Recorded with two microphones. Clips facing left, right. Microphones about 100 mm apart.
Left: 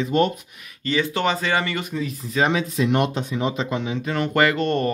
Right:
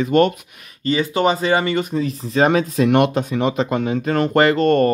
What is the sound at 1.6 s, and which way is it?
Speech, 35° right (ahead or behind).